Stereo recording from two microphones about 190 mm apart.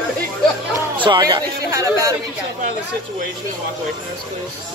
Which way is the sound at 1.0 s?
25° right (ahead or behind).